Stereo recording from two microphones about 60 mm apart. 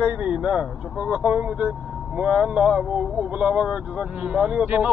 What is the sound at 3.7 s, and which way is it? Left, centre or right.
Speech, centre.